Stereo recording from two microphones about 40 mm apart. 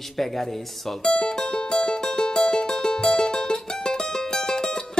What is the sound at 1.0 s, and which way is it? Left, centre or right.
Music, left.